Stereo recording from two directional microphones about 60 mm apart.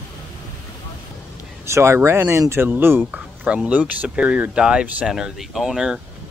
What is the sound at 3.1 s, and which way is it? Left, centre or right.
Speech, right.